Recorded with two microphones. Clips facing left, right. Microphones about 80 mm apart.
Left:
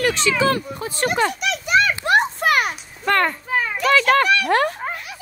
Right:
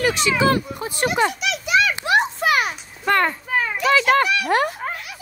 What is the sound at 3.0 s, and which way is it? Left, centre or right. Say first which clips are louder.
Speech: even; centre.